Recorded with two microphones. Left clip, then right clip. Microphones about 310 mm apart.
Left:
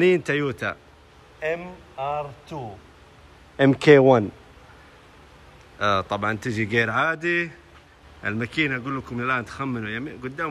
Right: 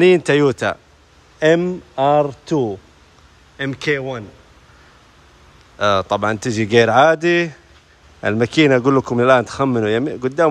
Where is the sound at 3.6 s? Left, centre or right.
Centre.